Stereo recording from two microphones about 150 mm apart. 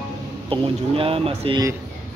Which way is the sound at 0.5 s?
40° right (ahead or behind).